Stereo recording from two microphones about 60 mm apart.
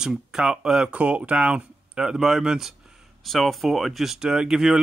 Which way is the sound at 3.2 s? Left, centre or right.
Centre.